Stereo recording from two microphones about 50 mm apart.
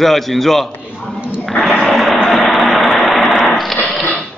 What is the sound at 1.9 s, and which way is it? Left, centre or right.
Vehicle, centre.